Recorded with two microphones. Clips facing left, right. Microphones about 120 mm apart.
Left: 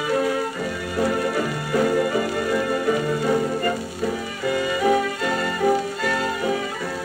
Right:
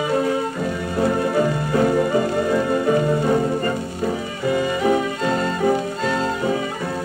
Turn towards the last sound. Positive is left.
turn(degrees=-20)  # may be behind; listen again after turning